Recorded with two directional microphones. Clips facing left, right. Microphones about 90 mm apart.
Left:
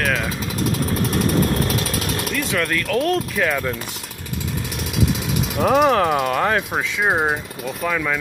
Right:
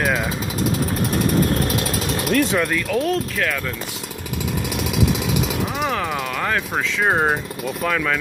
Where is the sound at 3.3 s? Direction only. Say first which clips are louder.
Left 3 dB; 15° left (ahead or behind).